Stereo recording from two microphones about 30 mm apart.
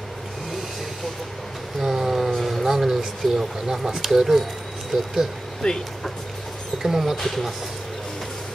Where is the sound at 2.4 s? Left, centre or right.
Centre.